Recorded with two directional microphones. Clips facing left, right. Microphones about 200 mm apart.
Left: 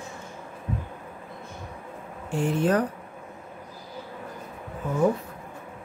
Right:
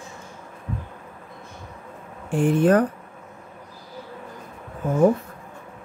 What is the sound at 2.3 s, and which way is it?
Speech, 55° right (ahead or behind).